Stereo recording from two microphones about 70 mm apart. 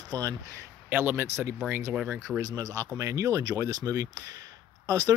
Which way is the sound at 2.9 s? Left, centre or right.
Right.